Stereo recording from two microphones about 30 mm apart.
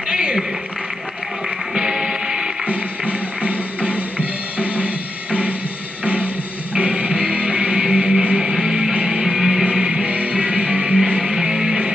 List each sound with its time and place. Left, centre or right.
0.1 s a sound: right
1.7 s music: centre
2.6 s music: right; by 8.9 s centre
8.9 s music: right
9.2 s music: centre
9.7 s music: right